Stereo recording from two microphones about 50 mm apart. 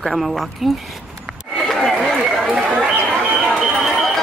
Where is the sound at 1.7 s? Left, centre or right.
Centre.